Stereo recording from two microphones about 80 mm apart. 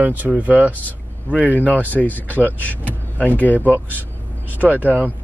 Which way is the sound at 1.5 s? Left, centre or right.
Centre.